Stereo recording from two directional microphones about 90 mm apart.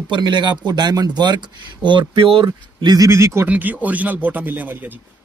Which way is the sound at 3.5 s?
20° right (ahead or behind).